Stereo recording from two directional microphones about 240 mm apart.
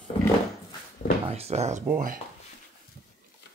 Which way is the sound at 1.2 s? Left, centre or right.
Right.